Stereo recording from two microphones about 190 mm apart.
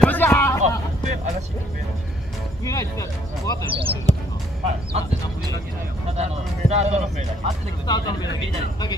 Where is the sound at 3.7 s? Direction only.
30° right (ahead or behind).